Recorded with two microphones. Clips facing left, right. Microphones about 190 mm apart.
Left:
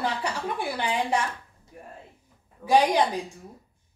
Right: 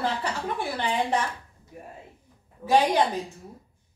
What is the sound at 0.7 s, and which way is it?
Speech, 10° left (ahead or behind).